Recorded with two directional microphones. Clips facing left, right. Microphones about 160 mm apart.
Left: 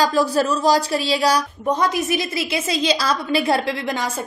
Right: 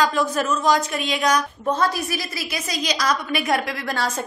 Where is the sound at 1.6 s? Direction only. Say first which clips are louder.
Left 4 dB; 20° left (ahead or behind).